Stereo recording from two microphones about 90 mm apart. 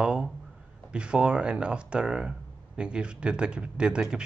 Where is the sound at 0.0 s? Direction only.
10° right (ahead or behind).